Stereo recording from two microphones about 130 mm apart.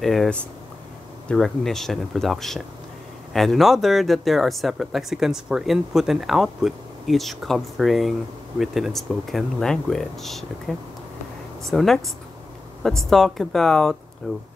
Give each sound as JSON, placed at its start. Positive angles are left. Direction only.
{"t": 0.0, "sound": "speech", "side_deg": 0}